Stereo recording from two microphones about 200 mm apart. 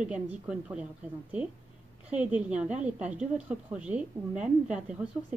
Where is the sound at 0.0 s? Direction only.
5° right (ahead or behind).